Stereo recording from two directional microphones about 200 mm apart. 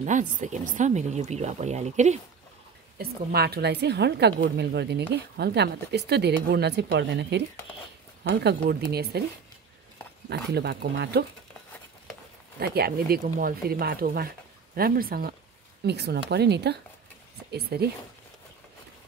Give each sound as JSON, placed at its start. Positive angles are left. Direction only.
{"t": 0.0, "sound": "speech", "side_deg": -40}
{"t": 3.0, "sound": "speech", "side_deg": -55}
{"t": 10.3, "sound": "speech", "side_deg": -55}
{"t": 12.5, "sound": "speech", "side_deg": -50}